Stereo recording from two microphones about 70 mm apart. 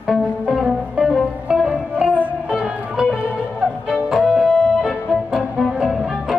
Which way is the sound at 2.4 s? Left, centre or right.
Centre.